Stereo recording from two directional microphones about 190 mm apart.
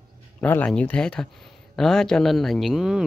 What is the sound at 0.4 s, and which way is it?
Speech, 10° left (ahead or behind).